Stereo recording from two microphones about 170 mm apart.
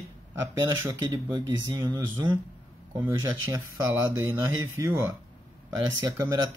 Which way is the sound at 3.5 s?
15° right (ahead or behind).